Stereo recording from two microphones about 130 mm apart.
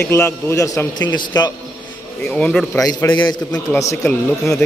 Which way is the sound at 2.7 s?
25° left (ahead or behind).